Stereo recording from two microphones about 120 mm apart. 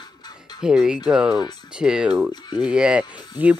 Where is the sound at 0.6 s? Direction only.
5° right (ahead or behind).